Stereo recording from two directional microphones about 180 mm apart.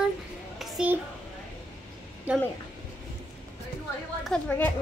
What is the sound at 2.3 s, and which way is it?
Speech, 10° right (ahead or behind).